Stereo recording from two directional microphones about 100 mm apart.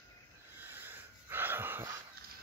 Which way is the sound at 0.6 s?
20° right (ahead or behind).